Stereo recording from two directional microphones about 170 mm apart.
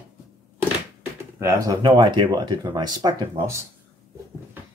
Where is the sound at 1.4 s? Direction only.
20° right (ahead or behind).